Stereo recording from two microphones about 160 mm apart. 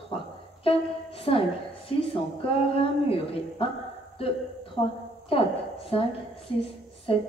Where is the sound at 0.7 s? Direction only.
35° left (ahead or behind).